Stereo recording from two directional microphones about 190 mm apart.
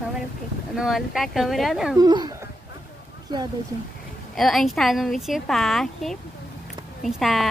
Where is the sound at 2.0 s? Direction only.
20° right (ahead or behind).